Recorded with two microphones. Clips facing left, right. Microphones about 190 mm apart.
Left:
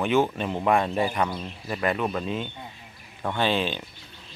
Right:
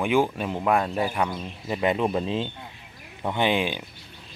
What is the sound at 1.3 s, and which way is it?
Speech, 15° right (ahead or behind).